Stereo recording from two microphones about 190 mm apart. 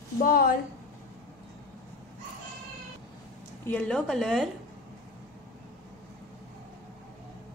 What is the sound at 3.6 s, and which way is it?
Speech, 5° left (ahead or behind).